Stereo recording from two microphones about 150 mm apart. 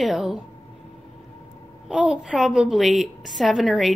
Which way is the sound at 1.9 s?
5° right (ahead or behind).